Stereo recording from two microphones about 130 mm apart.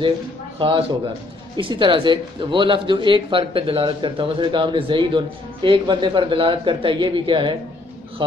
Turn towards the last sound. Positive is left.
turn(degrees=-40)  # may be behind; listen again after turning